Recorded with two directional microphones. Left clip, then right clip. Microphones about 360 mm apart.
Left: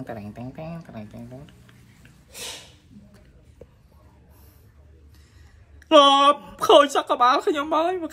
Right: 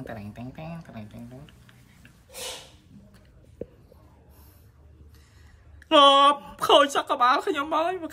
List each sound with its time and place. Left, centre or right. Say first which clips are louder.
0.0 s speech: left 3 dB; centre
5.9 s speech: left 2 dB; centre